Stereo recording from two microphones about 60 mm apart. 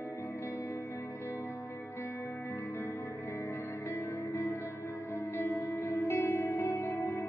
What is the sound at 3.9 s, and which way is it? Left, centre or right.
Music, left.